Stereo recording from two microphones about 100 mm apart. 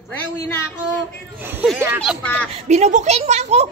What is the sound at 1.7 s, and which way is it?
Speech, 25° right (ahead or behind).